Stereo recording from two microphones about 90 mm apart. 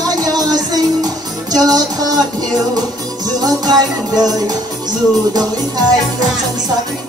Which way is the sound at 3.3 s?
45° right (ahead or behind).